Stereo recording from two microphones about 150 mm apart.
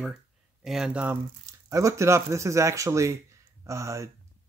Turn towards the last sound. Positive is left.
turn(degrees=-20)  # may be behind; listen again after turning